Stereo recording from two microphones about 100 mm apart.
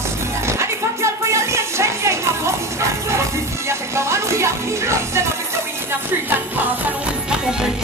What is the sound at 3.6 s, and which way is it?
Music, 30° right (ahead or behind).